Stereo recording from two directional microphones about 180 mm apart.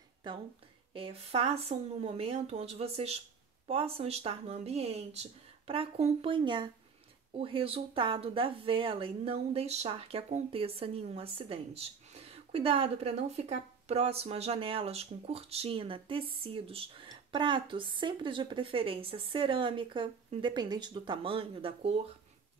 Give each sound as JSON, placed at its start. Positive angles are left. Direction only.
{"t": 0.2, "sound": "speech", "side_deg": -25}